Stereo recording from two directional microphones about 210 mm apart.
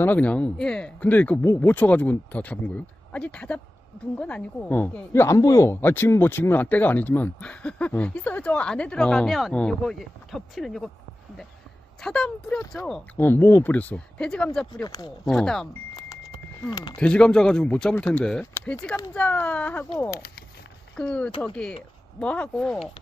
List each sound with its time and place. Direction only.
0.0 s speech: 5° left (ahead or behind)
12.0 s speech: 5° left (ahead or behind)
15.9 s a sound: 15° left (ahead or behind)
17.0 s speech: 5° left (ahead or behind)
20.9 s speech: 5° left (ahead or behind)